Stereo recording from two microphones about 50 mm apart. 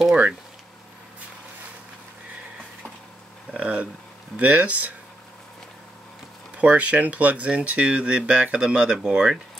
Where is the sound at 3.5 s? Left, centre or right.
Right.